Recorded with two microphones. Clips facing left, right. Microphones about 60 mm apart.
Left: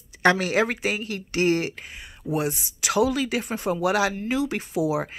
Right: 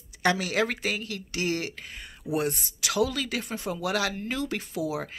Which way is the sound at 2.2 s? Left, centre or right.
Centre.